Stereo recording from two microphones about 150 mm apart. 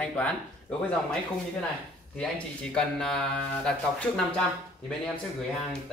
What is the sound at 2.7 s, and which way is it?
Speech, 5° left (ahead or behind).